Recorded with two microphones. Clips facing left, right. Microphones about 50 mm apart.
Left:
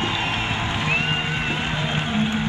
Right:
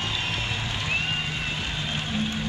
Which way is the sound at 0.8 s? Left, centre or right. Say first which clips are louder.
Left 4 dB; left.